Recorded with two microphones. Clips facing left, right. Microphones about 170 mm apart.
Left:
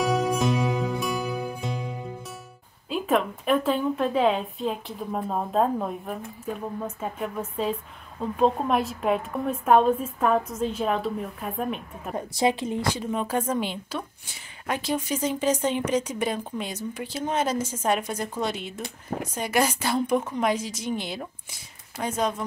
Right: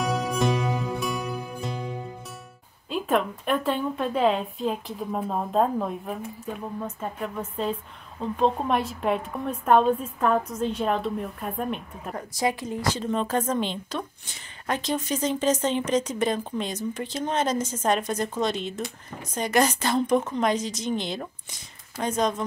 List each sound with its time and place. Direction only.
0.0 s music: centre (ahead or behind)
2.9 s a woman's voice: centre (ahead or behind)
12.2 s a woman's voice: 25° left (ahead or behind)
12.9 s a woman's voice: 10° left (ahead or behind)
18.8 s speech: 55° left (ahead or behind)
19.3 s a woman's voice: 10° left (ahead or behind)